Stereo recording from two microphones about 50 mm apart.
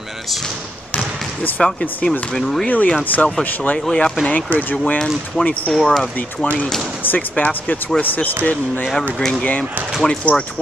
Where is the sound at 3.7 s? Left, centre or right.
Centre.